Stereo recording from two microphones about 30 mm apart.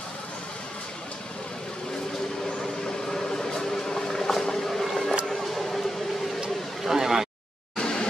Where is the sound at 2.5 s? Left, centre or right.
Centre.